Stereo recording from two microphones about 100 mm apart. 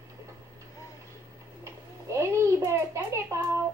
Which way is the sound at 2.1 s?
30° right (ahead or behind).